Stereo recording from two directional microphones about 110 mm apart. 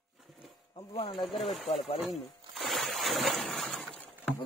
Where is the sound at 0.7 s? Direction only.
60° left (ahead or behind).